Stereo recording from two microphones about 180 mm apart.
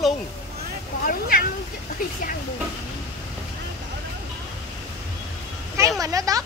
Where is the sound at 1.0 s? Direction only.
55° left (ahead or behind).